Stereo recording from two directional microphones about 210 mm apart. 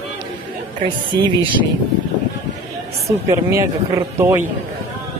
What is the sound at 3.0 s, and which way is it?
A woman's voice, 15° right (ahead or behind).